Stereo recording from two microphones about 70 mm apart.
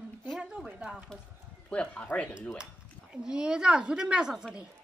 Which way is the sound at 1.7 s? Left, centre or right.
Centre.